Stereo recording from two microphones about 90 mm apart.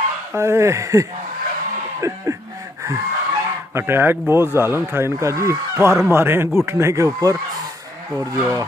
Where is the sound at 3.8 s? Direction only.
25° right (ahead or behind).